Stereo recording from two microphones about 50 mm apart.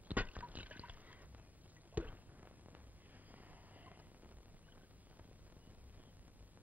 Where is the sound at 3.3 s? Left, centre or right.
Right.